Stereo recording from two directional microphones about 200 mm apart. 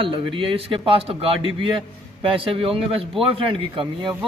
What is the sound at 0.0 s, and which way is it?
A man's voice, 25° right (ahead or behind).